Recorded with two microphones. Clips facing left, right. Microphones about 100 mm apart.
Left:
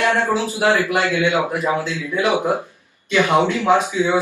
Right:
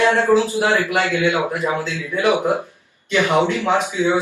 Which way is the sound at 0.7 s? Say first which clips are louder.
Left 1 dB; 20° left (ahead or behind).